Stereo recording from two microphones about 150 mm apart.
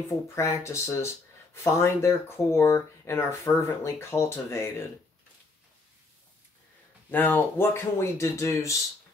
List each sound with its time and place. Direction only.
0.4 s speech: 20° left (ahead or behind)
7.1 s speech: 10° left (ahead or behind)